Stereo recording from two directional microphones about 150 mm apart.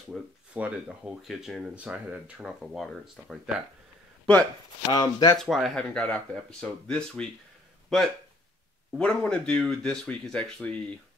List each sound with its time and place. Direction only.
0.1 s speech: 10° right (ahead or behind)
4.9 s speech: 25° left (ahead or behind)
5.4 s speech: centre (ahead or behind)